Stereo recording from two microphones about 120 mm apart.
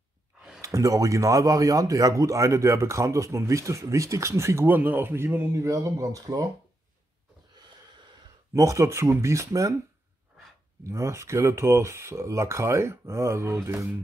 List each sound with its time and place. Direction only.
0.6 s speech: 30° right (ahead or behind)
8.5 s speech: 25° right (ahead or behind)
10.8 s speech: 25° right (ahead or behind)